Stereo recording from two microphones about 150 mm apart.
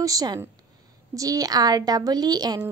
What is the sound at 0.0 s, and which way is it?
Speech, 25° right (ahead or behind).